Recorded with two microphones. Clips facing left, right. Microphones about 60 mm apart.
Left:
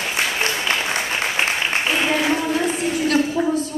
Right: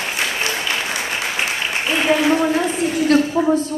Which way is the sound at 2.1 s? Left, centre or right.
Right.